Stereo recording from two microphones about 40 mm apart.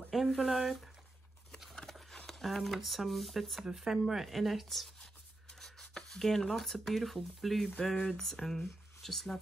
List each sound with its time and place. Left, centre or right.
0.1 s speech: centre
2.0 s speech: centre
5.5 s a sound: centre
6.0 s speech: centre